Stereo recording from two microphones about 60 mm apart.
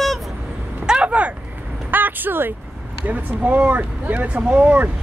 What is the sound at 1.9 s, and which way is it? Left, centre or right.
Speech, right.